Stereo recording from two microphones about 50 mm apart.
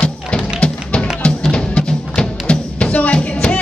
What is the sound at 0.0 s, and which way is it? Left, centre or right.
Music, left.